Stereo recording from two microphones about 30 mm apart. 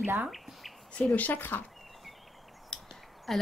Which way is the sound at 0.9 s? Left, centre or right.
Left.